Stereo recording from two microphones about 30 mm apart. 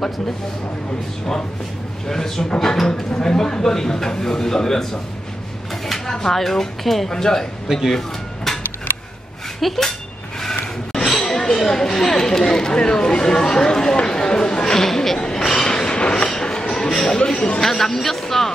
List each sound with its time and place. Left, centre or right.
2.0 s a man's voice: centre
7.1 s speech: centre
7.6 s speech: centre
8.5 s a sound: centre
9.6 s speech: centre
11.1 s a sound: centre
11.5 s speech: centre
14.0 s chatter: left
15.1 s a sound: left
15.9 s train: left
16.9 s a man's voice: centre
17.2 s speech: left
17.6 s a man's voice: centre